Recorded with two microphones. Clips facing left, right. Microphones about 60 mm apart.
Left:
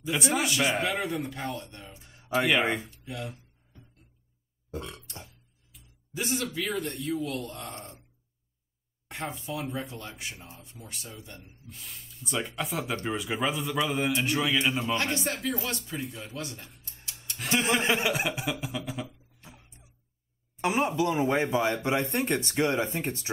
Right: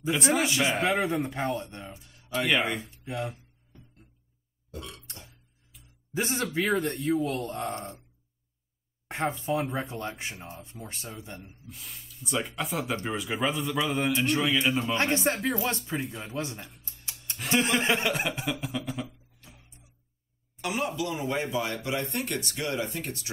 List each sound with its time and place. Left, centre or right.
0.1 s a man's voice: centre
1.2 s speech: right
2.0 s a sound: left
2.3 s a man's voice: centre
2.6 s speech: left
3.1 s a sound: right
4.6 s burping: left
6.1 s speech: right
9.0 s a sound: right
9.4 s speech: right
11.6 s a man's voice: centre
15.0 s speech: right
17.4 s a man's voice: centre
20.6 s speech: left